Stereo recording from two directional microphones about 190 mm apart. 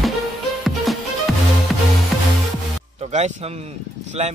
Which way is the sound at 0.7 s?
Centre (ahead or behind).